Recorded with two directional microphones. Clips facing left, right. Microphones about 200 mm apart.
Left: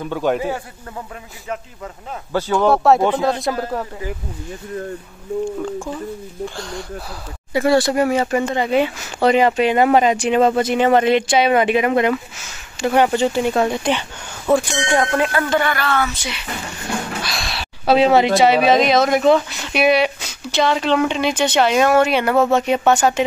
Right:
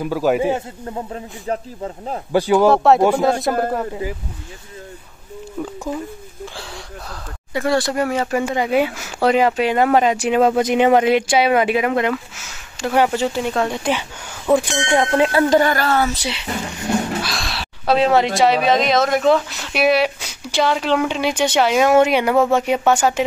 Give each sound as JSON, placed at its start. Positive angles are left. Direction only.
{"t": 0.0, "sound": "speech", "side_deg": -5}
{"t": 0.4, "sound": "speech", "side_deg": -25}
{"t": 2.3, "sound": "speech", "side_deg": -15}
{"t": 2.7, "sound": "speech", "side_deg": 0}
{"t": 7.5, "sound": "speech", "side_deg": 5}
{"t": 14.9, "sound": "speech", "side_deg": -20}
{"t": 15.5, "sound": "speech", "side_deg": -40}
{"t": 17.2, "sound": "speech", "side_deg": 0}